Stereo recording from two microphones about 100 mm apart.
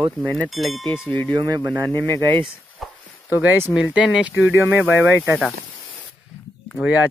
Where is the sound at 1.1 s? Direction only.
15° left (ahead or behind).